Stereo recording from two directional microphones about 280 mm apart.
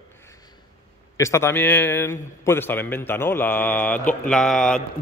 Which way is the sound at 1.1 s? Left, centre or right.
Centre.